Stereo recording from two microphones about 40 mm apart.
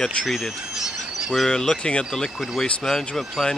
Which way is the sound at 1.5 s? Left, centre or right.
Centre.